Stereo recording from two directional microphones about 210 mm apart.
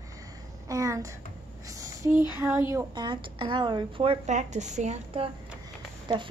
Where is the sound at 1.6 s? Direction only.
15° right (ahead or behind).